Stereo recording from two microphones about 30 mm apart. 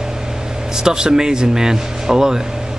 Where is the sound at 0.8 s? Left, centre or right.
Right.